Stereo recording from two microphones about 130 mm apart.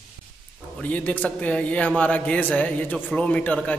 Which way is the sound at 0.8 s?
10° left (ahead or behind).